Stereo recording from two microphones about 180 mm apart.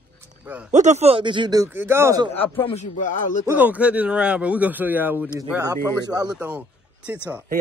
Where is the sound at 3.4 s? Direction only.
10° right (ahead or behind).